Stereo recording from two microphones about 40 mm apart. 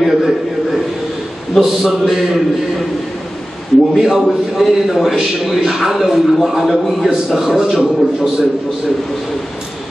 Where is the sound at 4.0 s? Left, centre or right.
Centre.